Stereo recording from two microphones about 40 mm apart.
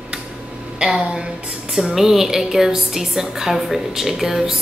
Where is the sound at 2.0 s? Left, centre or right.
Centre.